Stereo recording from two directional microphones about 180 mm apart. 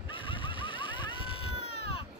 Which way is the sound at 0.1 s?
30° left (ahead or behind).